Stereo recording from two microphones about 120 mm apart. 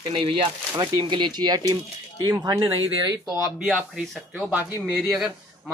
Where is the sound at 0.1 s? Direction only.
50° right (ahead or behind).